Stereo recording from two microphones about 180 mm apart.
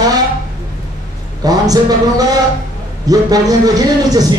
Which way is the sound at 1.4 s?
20° right (ahead or behind).